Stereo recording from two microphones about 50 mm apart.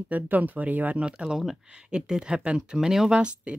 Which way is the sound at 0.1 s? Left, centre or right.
Right.